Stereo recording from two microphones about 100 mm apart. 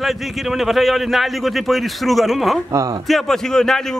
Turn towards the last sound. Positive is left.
turn(degrees=5)  # may be behind; listen again after turning